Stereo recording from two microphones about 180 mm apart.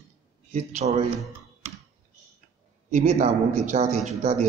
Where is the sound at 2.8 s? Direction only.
40° right (ahead or behind).